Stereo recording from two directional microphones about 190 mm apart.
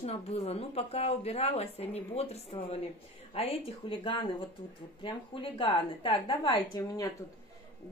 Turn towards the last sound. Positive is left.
turn(degrees=15)  # may be behind; listen again after turning